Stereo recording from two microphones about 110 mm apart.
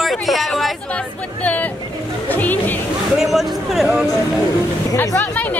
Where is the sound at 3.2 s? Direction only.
Centre (ahead or behind).